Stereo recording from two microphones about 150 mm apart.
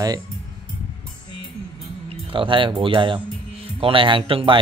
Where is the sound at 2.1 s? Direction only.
35° right (ahead or behind).